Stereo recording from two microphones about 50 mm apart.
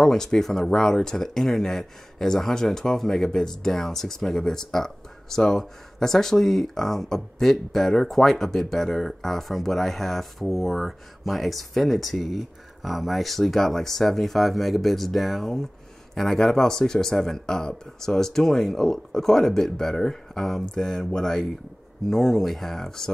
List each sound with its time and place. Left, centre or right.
0.0 s speech: centre